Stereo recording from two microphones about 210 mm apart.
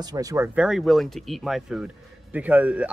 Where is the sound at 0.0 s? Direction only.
15° right (ahead or behind).